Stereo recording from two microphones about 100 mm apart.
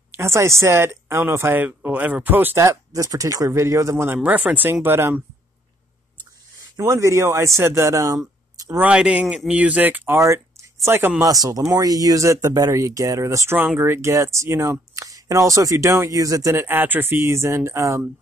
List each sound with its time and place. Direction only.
0.1 s speech: 25° right (ahead or behind)
2.6 s speech: 35° right (ahead or behind)
4.2 s speech: 15° right (ahead or behind)
6.8 s speech: 30° right (ahead or behind)
8.7 s speech: 10° right (ahead or behind)
10.1 s speech: 30° right (ahead or behind)
16.6 s speech: 20° right (ahead or behind)